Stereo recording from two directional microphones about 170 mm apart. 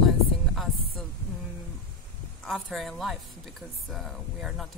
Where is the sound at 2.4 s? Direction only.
5° left (ahead or behind).